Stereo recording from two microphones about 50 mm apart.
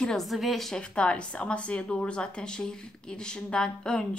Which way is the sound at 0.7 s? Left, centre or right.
Left.